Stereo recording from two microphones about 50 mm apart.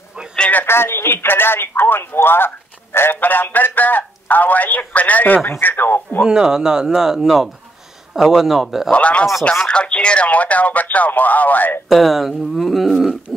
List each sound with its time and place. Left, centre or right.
0.7 s speech: left
3.2 s speech: left
5.6 s speech: left
6.2 s speech: centre
8.9 s speech: left
11.9 s speech: centre